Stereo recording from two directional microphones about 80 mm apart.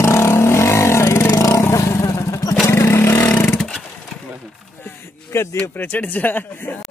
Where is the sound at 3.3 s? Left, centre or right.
Left.